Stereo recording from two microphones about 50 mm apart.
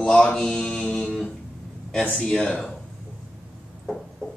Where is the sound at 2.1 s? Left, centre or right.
Centre.